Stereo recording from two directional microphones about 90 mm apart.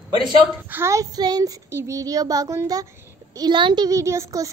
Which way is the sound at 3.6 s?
65° right (ahead or behind).